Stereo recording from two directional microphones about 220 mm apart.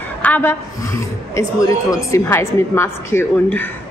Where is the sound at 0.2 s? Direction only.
10° left (ahead or behind).